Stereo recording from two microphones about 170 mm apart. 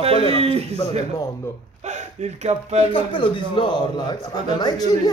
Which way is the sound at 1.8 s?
45° right (ahead or behind).